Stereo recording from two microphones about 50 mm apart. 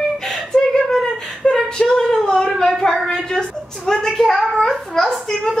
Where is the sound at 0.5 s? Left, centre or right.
Centre.